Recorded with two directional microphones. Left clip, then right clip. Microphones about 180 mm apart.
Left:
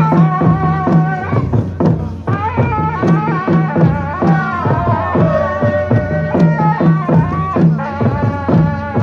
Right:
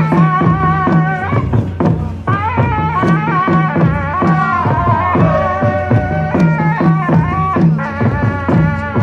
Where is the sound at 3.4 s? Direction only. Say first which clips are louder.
Right 1 dB; 25° left (ahead or behind).